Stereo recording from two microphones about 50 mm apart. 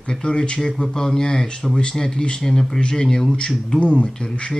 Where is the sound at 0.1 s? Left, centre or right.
Centre.